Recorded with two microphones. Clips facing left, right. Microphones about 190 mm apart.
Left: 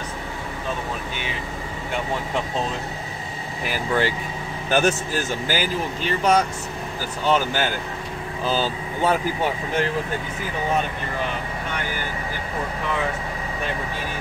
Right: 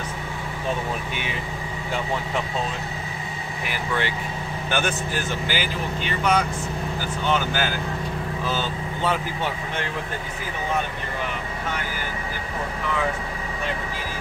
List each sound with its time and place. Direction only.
3.7 s speech: 40° left (ahead or behind)